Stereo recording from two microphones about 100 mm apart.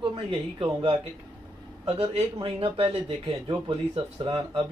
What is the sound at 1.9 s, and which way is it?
Speech, 90° right.